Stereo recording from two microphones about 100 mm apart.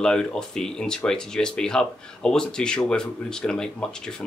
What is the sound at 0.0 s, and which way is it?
Speech, 5° left (ahead or behind).